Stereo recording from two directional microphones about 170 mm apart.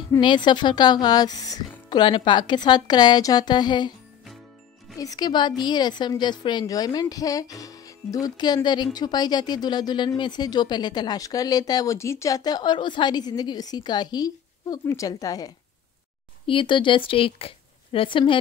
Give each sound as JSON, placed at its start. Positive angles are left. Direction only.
{"t": 0.1, "sound": "speech", "side_deg": 25}
{"t": 4.9, "sound": "speech", "side_deg": 20}